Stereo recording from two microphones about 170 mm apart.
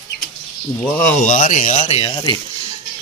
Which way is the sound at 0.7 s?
10° left (ahead or behind).